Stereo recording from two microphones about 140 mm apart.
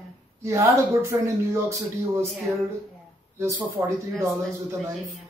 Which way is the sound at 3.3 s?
20° right (ahead or behind).